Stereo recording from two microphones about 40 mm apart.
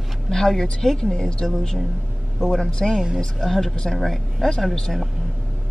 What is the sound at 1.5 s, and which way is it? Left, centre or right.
A woman's voice, centre.